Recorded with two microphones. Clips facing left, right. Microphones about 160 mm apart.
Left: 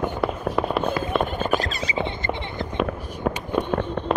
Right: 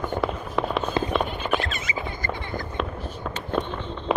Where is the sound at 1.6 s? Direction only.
35° left (ahead or behind).